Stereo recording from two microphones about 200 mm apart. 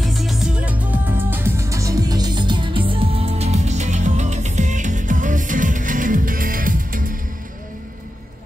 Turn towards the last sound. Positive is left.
turn(degrees=-45)  # may be behind; listen again after turning